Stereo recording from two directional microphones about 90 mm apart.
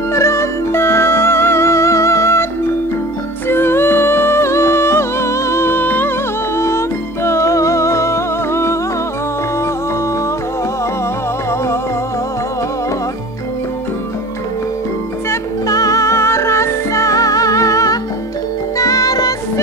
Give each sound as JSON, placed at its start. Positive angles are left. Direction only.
{"t": 0.1, "sound": "music", "side_deg": 30}
{"t": 3.4, "sound": "music", "side_deg": 25}
{"t": 15.2, "sound": "music", "side_deg": 40}